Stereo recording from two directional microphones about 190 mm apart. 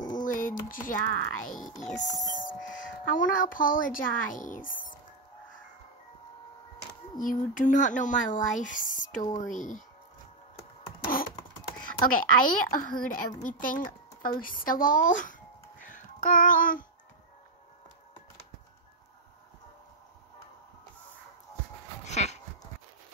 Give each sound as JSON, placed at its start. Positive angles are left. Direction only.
{"t": 0.2, "sound": "speech", "side_deg": 45}
{"t": 3.1, "sound": "speech", "side_deg": 45}
{"t": 7.2, "sound": "speech", "side_deg": 45}
{"t": 12.1, "sound": "speech", "side_deg": 45}
{"t": 15.8, "sound": "child singing", "side_deg": 45}
{"t": 22.0, "sound": "a sound", "side_deg": 35}